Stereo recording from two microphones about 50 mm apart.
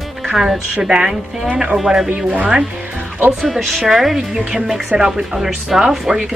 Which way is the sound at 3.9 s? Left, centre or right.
Centre.